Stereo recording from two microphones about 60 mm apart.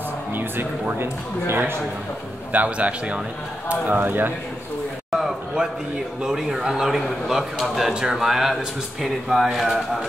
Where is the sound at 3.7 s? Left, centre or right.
Right.